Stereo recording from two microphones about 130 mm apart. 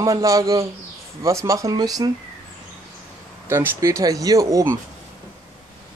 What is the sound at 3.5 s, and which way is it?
Speech, 20° right (ahead or behind).